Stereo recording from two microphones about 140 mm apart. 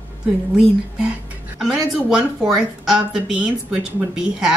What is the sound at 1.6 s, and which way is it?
Speech, centre (ahead or behind).